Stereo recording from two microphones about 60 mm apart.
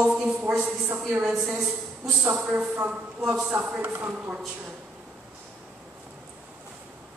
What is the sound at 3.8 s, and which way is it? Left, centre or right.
Speech, right.